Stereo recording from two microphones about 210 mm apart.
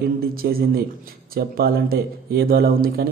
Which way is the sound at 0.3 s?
45° right (ahead or behind).